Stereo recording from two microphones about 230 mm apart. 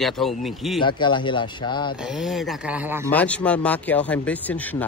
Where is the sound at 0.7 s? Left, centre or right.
Centre.